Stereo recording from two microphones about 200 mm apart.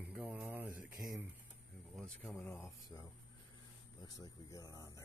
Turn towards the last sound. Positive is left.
turn(degrees=15)  # may be behind; listen again after turning